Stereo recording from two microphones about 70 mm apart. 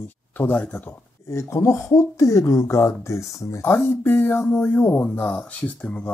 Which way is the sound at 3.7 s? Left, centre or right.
Left.